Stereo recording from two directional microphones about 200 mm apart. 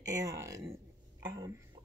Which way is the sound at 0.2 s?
15° right (ahead or behind).